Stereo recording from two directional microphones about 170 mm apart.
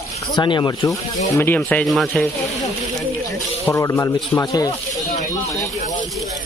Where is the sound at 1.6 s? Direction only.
5° left (ahead or behind).